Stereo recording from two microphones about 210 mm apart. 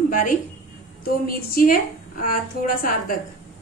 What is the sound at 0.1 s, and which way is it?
A woman's voice, 40° left (ahead or behind).